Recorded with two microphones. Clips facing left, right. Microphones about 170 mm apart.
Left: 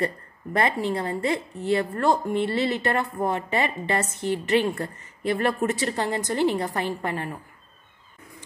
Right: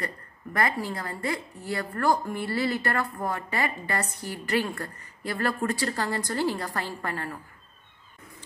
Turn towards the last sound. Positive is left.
turn(degrees=20)  # may be behind; listen again after turning